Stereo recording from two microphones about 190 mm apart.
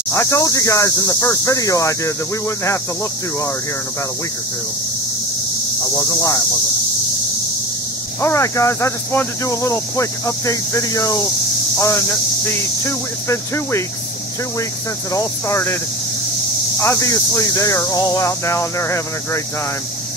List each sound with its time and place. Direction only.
0.1 s speech: 15° left (ahead or behind)
5.9 s speech: 20° left (ahead or behind)
8.2 s speech: 15° left (ahead or behind)
12.4 s speech: 15° left (ahead or behind)
15.1 s speech: 15° left (ahead or behind)
16.8 s speech: 15° left (ahead or behind)